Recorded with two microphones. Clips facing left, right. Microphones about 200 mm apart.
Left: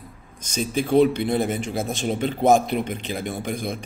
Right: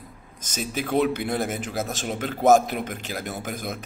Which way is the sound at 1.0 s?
5° right (ahead or behind).